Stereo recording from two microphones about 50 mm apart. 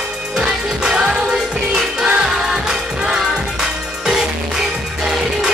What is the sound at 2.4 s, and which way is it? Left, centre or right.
Music, centre.